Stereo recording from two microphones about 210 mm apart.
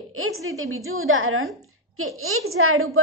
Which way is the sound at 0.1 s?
80° right.